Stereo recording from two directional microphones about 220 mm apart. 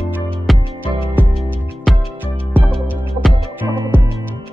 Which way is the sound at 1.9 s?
Centre (ahead or behind).